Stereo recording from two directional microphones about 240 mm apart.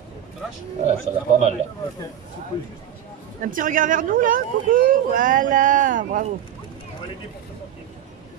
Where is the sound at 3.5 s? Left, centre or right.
Right.